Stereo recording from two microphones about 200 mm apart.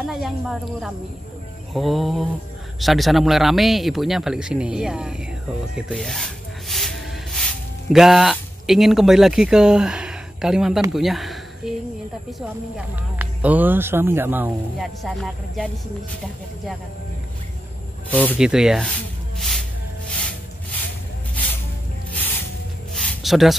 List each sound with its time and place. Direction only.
0.0 s a woman's voice: centre (ahead or behind)
18.4 s speech: 5° right (ahead or behind)
20.1 s music: 5° left (ahead or behind)
22.9 s a sound: centre (ahead or behind)